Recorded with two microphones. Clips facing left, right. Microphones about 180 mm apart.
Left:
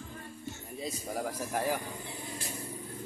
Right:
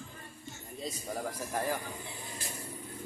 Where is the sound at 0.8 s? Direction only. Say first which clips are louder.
Left 1 dB; 10° left (ahead or behind).